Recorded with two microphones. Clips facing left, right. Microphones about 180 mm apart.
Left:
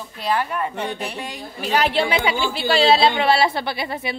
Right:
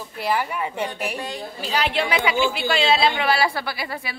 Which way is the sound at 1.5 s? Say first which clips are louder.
Left 5 dB; 60° left (ahead or behind).